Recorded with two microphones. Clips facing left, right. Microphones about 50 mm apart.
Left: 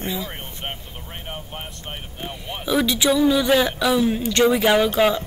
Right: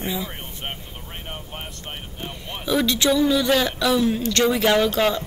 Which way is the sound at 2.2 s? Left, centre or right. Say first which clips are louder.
Left 1 dB; centre.